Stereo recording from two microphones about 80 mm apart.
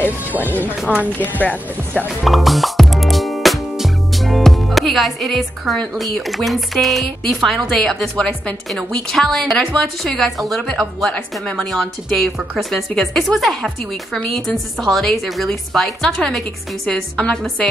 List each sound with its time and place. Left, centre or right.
1.1 s speech: left
2.0 s music: centre
5.9 s a woman's voice: centre
11.7 s a woman's voice: centre